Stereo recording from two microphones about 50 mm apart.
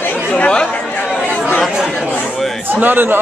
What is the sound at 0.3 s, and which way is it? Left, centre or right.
Speech, left.